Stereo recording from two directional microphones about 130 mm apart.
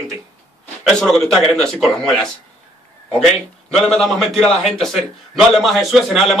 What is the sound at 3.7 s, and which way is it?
Speech, 5° left (ahead or behind).